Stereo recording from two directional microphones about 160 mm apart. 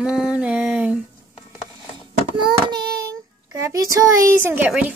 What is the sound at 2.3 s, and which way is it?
Child singing, 30° right (ahead or behind).